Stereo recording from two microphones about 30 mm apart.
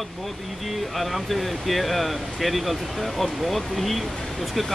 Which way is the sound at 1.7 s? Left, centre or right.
Centre.